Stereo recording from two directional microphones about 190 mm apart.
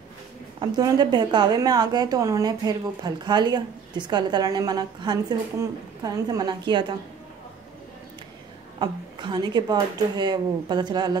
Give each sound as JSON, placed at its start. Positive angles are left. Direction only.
{"t": 0.6, "sound": "a woman's voice", "side_deg": -20}
{"t": 8.7, "sound": "a woman's voice", "side_deg": -25}